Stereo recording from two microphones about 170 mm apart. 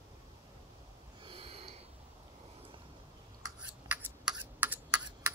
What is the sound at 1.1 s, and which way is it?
Snort, 30° right (ahead or behind).